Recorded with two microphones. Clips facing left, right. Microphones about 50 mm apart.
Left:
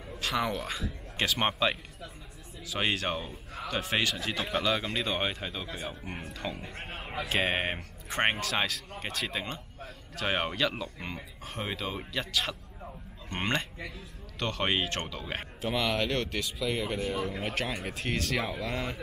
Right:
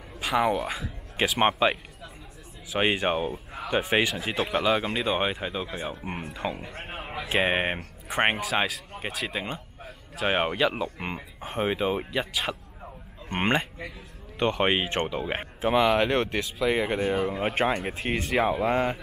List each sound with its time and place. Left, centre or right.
0.2 s speech: centre
6.6 s a man's voice: centre; by 18.9 s right